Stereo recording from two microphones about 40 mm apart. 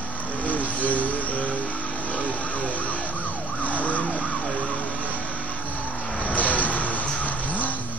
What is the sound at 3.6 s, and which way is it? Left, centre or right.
Vehicle, left.